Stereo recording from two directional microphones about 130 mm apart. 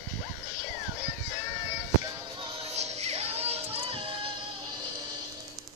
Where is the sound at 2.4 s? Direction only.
50° right (ahead or behind).